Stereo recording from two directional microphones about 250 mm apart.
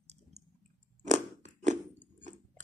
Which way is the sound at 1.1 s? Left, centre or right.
Right.